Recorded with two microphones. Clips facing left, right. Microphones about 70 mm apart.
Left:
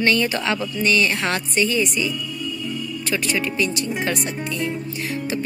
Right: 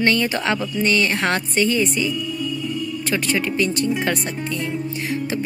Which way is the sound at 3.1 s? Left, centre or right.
Right.